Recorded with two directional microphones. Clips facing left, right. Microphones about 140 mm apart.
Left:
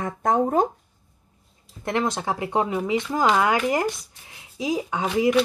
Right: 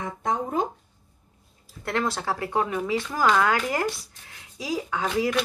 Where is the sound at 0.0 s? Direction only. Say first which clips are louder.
Left 6 dB; 50° left (ahead or behind).